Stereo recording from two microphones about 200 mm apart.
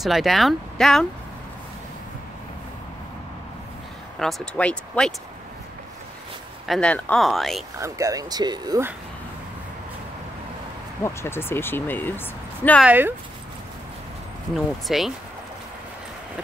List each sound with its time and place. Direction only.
0.0 s speech: centre (ahead or behind)
4.2 s speech: 5° left (ahead or behind)
6.7 s speech: 5° left (ahead or behind)
7.8 s speech: 15° right (ahead or behind)
11.1 s speech: 10° left (ahead or behind)
12.8 s speech: 10° right (ahead or behind)
14.5 s speech: centre (ahead or behind)